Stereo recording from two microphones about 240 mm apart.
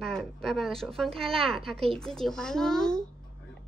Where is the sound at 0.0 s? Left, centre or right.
Centre.